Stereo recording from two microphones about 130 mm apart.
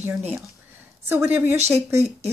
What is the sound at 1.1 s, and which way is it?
Speech, 15° right (ahead or behind).